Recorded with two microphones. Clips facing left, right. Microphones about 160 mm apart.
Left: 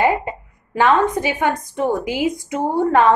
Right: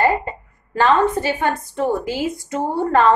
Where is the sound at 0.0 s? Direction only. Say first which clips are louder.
Even; 15° left (ahead or behind).